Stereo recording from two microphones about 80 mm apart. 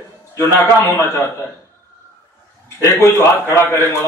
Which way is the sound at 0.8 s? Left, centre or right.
Left.